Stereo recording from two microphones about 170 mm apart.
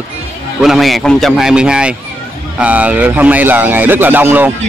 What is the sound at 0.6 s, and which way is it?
A man's voice, centre (ahead or behind).